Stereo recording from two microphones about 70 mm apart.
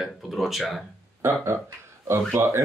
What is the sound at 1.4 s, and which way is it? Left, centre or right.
Speech, right.